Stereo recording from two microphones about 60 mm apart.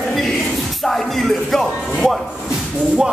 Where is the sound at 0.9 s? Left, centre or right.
Centre.